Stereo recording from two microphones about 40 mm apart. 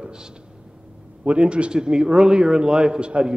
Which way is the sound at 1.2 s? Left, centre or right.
Right.